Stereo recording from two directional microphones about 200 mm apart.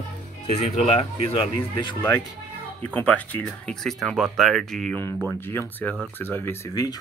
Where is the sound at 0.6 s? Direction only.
35° left (ahead or behind).